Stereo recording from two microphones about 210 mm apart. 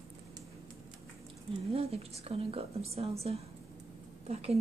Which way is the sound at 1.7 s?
30° right (ahead or behind).